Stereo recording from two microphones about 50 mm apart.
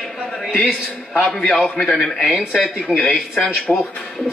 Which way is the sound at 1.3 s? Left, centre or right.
Centre.